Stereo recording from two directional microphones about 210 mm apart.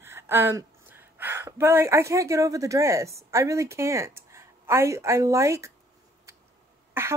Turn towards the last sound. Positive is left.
turn(degrees=-10)  # may be behind; listen again after turning